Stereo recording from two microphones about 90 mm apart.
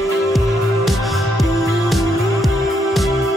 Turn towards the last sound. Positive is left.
turn(degrees=0)  # may be behind; listen again after turning